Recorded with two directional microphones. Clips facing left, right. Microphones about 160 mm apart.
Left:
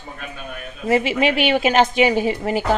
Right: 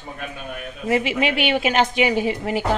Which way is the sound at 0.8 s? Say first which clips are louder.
Left 3 dB; 40° left (ahead or behind).